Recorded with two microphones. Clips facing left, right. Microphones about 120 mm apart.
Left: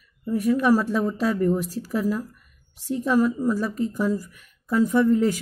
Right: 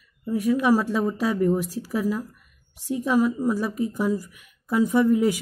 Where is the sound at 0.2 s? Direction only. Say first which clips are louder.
Left 1 dB; 5° right (ahead or behind).